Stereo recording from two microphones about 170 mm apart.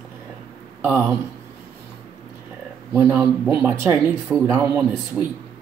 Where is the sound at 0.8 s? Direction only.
10° right (ahead or behind).